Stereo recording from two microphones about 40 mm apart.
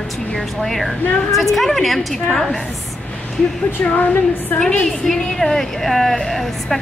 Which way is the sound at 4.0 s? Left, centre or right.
Left.